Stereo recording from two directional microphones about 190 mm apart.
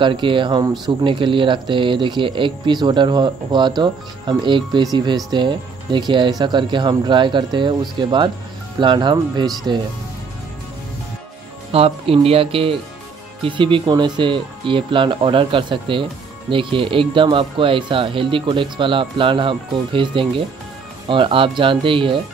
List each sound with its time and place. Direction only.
0.0 s speech: 25° right (ahead or behind)
11.7 s speech: 30° right (ahead or behind)